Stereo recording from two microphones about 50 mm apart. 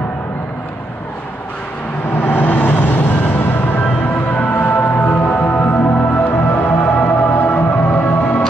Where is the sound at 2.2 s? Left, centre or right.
Left.